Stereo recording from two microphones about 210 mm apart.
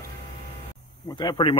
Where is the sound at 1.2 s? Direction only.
20° left (ahead or behind).